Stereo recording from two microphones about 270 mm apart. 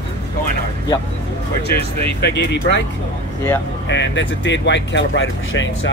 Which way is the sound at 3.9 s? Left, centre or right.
Left.